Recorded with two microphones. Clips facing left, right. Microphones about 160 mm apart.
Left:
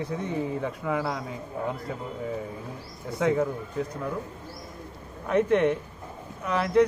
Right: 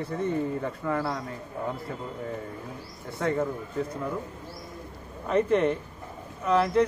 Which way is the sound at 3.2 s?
5° left (ahead or behind).